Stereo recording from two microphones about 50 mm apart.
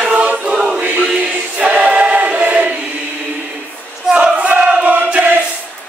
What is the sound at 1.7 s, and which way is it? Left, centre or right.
Choir, right.